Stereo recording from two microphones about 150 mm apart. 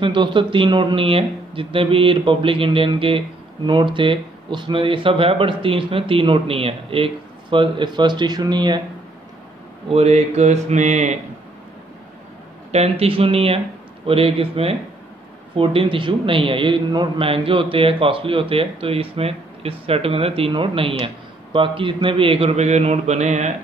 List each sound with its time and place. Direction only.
0.0 s speech: 30° right (ahead or behind)
9.8 s speech: 45° right (ahead or behind)
12.7 s speech: 45° right (ahead or behind)